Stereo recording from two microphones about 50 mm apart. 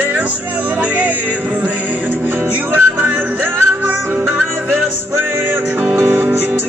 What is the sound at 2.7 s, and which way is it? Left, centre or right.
Music, right.